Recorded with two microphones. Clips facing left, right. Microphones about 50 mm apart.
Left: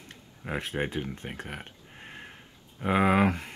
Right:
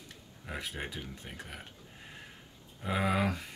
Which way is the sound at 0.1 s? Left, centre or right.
Left.